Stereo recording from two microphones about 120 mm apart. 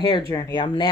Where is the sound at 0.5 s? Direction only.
40° left (ahead or behind).